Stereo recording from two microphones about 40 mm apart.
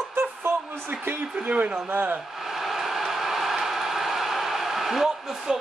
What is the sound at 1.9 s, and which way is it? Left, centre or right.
Speech, right.